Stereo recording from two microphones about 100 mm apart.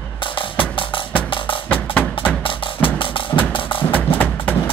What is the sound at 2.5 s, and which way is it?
Music, 60° left (ahead or behind).